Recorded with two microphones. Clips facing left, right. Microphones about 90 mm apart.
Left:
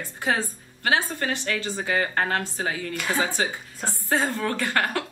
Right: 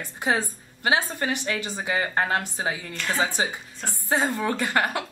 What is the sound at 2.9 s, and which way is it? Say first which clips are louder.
Speech: left 2 dB; 10° left (ahead or behind).